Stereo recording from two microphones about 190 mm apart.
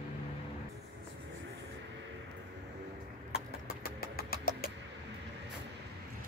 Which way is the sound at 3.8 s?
50° left (ahead or behind).